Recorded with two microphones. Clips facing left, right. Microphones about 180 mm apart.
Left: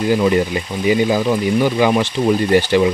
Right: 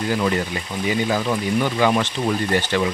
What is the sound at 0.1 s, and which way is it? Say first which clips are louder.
Speech: left 7 dB; 15° left (ahead or behind).